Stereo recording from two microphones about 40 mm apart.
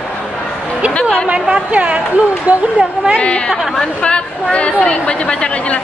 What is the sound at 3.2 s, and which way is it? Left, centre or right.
A woman's voice, left.